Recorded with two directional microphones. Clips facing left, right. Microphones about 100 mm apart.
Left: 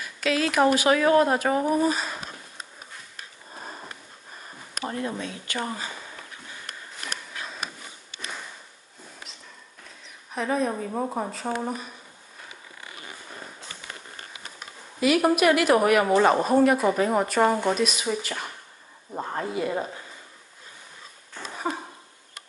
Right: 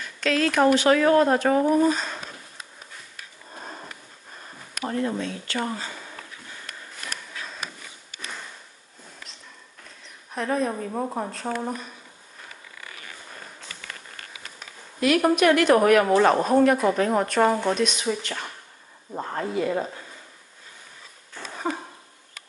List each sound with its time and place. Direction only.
0.0 s speech: 5° left (ahead or behind)
3.5 s sniff: 5° left (ahead or behind)
5.2 s speech: 15° left (ahead or behind)
10.3 s a woman's voice: centre (ahead or behind)
13.7 s a sound: 25° left (ahead or behind)
15.0 s a woman's voice: 5° left (ahead or behind)
21.7 s a sound: 10° left (ahead or behind)